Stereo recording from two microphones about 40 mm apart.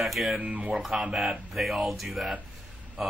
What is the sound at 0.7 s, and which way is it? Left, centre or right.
A man's voice, centre.